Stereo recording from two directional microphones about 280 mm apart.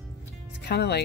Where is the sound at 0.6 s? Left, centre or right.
Left.